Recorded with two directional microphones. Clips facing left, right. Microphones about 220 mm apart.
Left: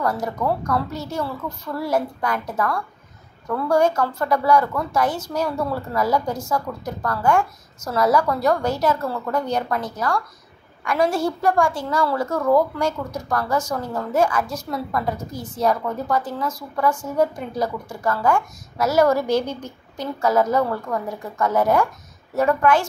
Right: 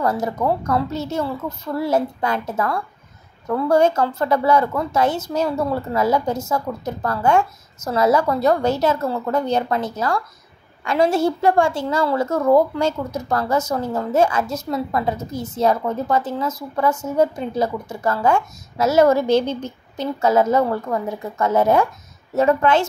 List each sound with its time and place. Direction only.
0.0 s a woman's voice: 25° right (ahead or behind)